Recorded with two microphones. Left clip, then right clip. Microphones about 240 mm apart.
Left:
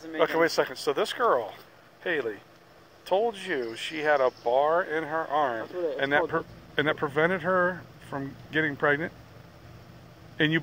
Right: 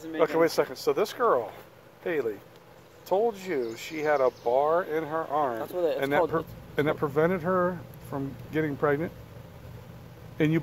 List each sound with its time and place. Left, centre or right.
0.2 s speech: centre
10.3 s speech: centre